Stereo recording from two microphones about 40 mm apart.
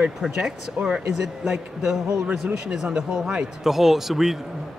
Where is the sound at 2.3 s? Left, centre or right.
Right.